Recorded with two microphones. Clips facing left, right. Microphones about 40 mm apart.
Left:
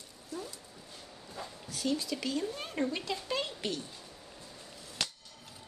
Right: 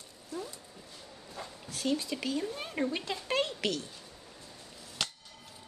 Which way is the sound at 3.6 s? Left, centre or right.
Right.